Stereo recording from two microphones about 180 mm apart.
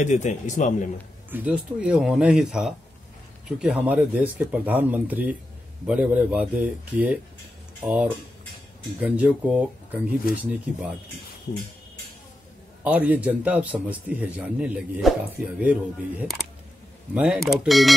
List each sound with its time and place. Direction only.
0.0 s a man's voice: 45° left (ahead or behind)
1.3 s a man's voice: 5° right (ahead or behind)
12.8 s a man's voice: 5° right (ahead or behind)